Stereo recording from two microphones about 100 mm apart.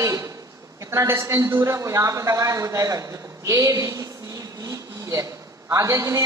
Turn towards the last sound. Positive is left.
turn(degrees=-30)  # may be behind; listen again after turning